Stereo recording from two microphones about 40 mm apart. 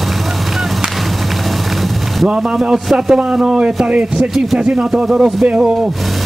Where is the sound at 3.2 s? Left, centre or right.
Right.